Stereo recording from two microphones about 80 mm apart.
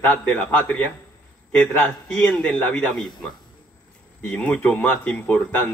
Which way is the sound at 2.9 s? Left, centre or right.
Centre.